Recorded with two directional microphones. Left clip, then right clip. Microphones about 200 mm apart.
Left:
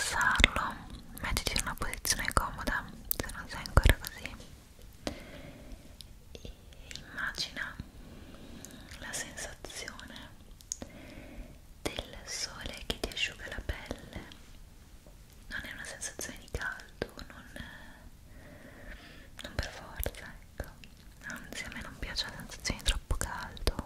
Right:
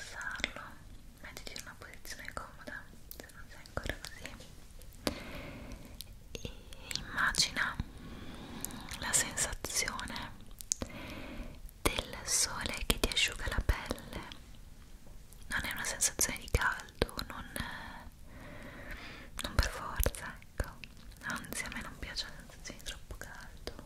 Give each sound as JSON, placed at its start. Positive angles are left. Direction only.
{"t": 0.1, "sound": "whispering", "side_deg": 60}
{"t": 4.2, "sound": "a sound", "side_deg": 20}
{"t": 5.0, "sound": "whispering", "side_deg": -15}
{"t": 15.4, "sound": "whispering", "side_deg": -25}
{"t": 22.0, "sound": "whispering", "side_deg": 20}
{"t": 22.6, "sound": "whispering", "side_deg": 45}